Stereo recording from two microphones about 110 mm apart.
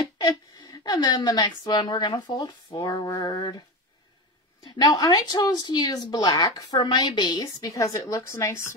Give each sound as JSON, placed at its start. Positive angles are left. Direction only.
{"t": 0.0, "sound": "speech", "side_deg": 40}
{"t": 4.6, "sound": "speech", "side_deg": 35}
{"t": 7.7, "sound": "a woman's voice", "side_deg": 30}